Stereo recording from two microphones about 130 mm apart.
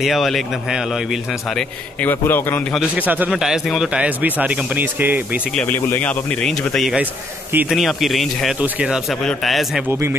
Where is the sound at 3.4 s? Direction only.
Centre (ahead or behind).